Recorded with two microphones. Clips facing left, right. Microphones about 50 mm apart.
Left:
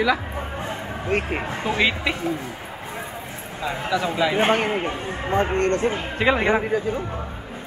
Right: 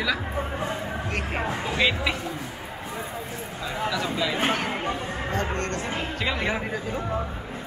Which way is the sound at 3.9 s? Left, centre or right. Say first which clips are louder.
Left 5 dB; centre.